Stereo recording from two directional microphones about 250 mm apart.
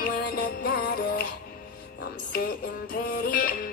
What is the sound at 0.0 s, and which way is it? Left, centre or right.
Music, left.